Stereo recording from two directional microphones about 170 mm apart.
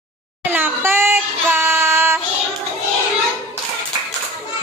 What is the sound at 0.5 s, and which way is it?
Child singing, 10° right (ahead or behind).